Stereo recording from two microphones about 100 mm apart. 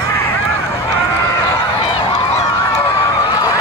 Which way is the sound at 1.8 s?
70° left (ahead or behind).